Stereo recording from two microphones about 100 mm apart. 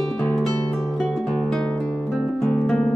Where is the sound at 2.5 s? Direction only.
10° left (ahead or behind).